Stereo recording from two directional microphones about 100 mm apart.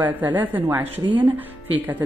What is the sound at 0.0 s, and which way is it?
A woman's voice, 15° right (ahead or behind).